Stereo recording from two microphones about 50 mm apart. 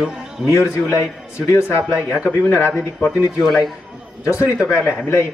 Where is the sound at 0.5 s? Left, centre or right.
Left.